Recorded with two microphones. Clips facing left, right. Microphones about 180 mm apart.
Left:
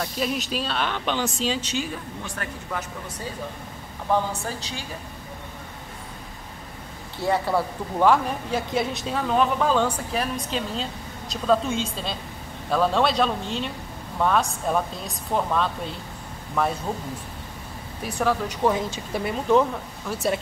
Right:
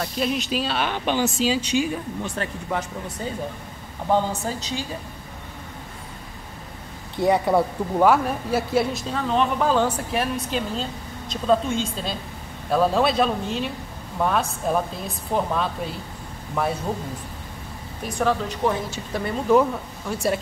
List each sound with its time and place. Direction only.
0.0 s speech: centre (ahead or behind)
2.2 s speech: 25° right (ahead or behind)
4.1 s speech: 20° right (ahead or behind)
7.2 s speech: 20° right (ahead or behind)
8.1 s speech: 5° right (ahead or behind)
18.0 s speech: 10° left (ahead or behind)
20.1 s speech: centre (ahead or behind)